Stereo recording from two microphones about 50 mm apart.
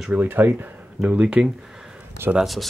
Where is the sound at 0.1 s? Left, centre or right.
Right.